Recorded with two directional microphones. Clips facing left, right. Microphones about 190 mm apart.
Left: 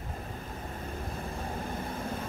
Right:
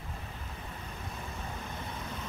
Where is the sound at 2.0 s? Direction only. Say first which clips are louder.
Left 6 dB; 50° left (ahead or behind).